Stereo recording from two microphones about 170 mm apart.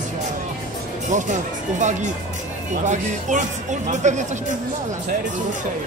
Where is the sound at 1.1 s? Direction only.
45° right (ahead or behind).